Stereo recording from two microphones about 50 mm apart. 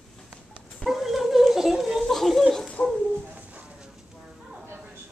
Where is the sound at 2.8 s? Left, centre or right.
Left.